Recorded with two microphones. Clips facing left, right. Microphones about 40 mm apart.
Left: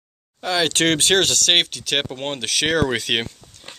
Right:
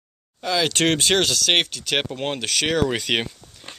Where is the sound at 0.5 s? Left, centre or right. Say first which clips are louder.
Left 1 dB; left.